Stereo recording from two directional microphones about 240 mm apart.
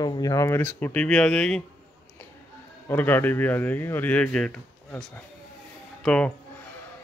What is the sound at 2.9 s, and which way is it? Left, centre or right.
Speech, centre.